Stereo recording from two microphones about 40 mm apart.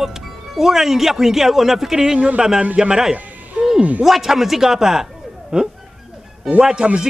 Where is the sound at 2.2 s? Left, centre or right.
Right.